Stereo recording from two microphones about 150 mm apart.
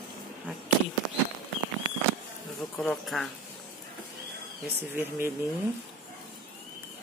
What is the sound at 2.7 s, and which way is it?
Speech, 5° left (ahead or behind).